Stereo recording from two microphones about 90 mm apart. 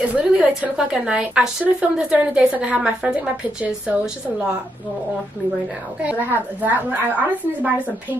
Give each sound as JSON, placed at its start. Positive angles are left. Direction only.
{"t": 0.0, "sound": "a woman's voice", "side_deg": -15}
{"t": 6.0, "sound": "a woman's voice", "side_deg": -20}